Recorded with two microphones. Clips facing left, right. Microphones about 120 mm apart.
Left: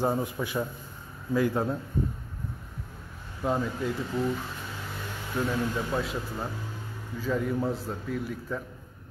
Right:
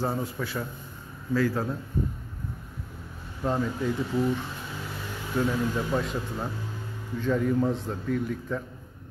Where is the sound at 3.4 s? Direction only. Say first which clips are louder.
Right 1 dB; 5° left (ahead or behind).